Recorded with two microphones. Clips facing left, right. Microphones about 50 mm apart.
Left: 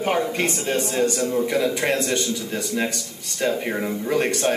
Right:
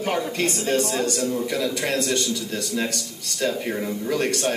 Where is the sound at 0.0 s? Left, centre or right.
Left.